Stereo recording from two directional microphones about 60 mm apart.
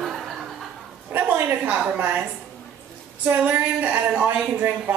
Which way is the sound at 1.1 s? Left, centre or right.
Right.